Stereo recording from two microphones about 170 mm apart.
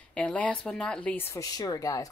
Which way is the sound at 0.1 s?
10° left (ahead or behind).